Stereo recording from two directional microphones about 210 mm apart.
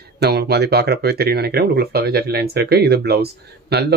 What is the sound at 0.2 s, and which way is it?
Speech, 50° right (ahead or behind).